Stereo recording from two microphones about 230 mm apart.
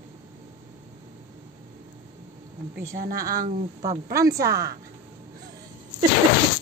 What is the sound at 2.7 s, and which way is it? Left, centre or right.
Speech, right.